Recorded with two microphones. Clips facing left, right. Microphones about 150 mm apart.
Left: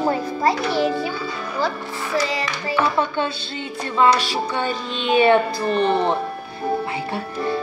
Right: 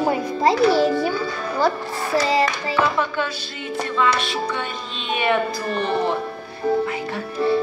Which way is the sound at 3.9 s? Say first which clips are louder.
Left 5 dB; 35° left (ahead or behind).